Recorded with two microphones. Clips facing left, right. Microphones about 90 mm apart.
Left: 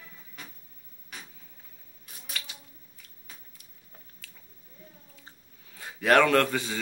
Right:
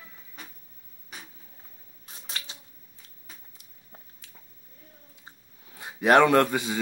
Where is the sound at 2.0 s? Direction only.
30° right (ahead or behind).